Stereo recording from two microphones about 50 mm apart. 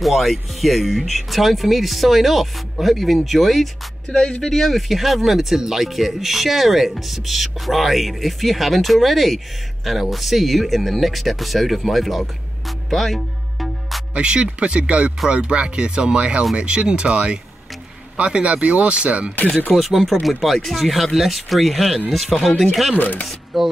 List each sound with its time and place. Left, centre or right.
0.0 s speech: centre
4.1 s speech: centre
4.4 s speech: centre
14.1 s speech: right
19.7 s speech: centre
22.9 s speech: left
23.2 s speech: centre